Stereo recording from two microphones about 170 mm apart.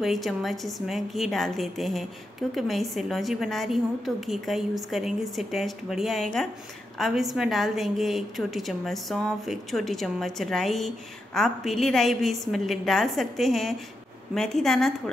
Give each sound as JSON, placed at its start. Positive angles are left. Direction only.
{"t": 0.0, "sound": "a woman's voice", "side_deg": 0}